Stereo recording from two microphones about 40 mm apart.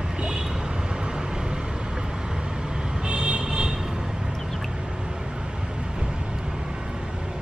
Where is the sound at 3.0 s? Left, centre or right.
Right.